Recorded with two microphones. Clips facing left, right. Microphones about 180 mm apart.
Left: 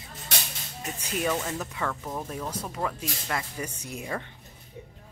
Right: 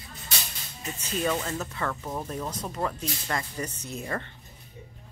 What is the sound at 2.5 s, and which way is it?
Speech, 10° left (ahead or behind).